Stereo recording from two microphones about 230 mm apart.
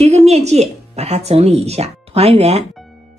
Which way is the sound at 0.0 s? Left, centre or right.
Right.